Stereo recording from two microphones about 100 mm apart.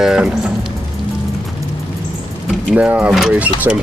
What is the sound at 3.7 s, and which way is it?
Speech, 20° right (ahead or behind).